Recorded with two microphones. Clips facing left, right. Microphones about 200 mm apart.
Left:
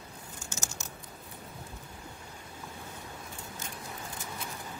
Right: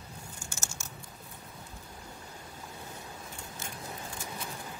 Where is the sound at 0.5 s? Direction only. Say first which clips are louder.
Left 6 dB; 20° left (ahead or behind).